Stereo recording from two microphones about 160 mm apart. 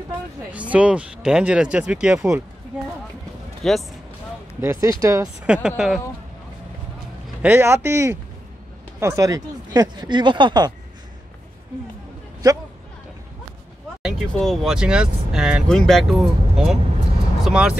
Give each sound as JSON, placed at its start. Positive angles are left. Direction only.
{"t": 0.5, "sound": "speech", "side_deg": -10}
{"t": 3.6, "sound": "speech", "side_deg": 5}
{"t": 4.6, "sound": "speech", "side_deg": -20}
{"t": 5.5, "sound": "speech", "side_deg": -5}
{"t": 7.4, "sound": "speech", "side_deg": -15}
{"t": 12.4, "sound": "speech", "side_deg": -25}
{"t": 14.0, "sound": "speech", "side_deg": 5}